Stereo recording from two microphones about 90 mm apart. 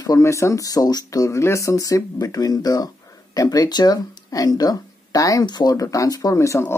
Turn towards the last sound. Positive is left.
turn(degrees=30)  # may be behind; listen again after turning